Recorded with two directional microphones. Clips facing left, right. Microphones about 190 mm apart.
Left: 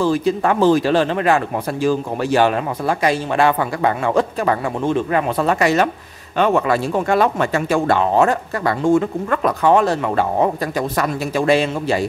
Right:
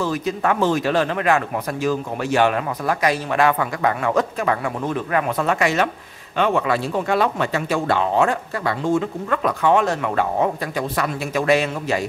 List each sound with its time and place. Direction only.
0.0 s speech: 30° left (ahead or behind)
11.4 s a man's voice: 30° left (ahead or behind)